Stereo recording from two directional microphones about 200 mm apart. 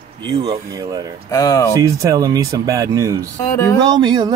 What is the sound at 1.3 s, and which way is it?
Speech, 15° left (ahead or behind).